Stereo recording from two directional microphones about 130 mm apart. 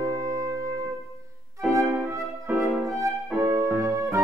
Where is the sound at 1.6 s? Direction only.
Centre (ahead or behind).